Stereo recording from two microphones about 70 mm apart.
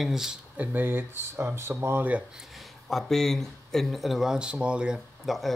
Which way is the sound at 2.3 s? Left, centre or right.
Centre.